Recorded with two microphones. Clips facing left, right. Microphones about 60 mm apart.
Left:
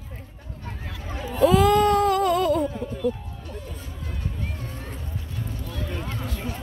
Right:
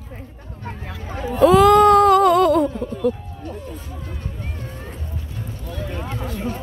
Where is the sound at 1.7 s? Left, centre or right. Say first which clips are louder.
Right 7 dB; right.